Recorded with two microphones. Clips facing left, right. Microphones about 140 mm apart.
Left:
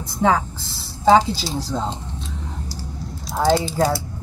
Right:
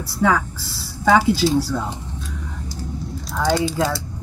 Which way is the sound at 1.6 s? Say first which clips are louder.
Right 2 dB; 20° left (ahead or behind).